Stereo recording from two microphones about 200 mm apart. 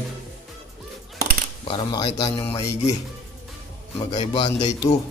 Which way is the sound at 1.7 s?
25° left (ahead or behind).